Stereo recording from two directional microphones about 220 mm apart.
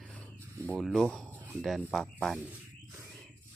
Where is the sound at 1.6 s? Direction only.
Centre (ahead or behind).